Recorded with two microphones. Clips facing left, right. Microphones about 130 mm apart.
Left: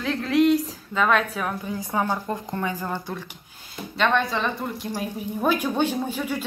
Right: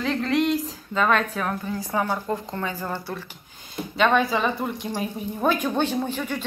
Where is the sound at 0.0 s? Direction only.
Centre (ahead or behind).